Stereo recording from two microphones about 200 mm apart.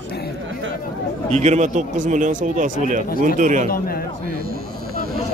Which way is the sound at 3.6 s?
45° left (ahead or behind).